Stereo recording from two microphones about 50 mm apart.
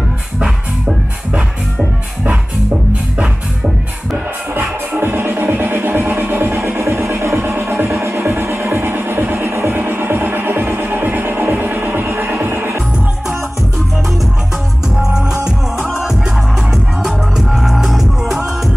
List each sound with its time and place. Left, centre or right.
4.9 s music: right
6.8 s music: right
8.2 s music: right
15.0 s music: centre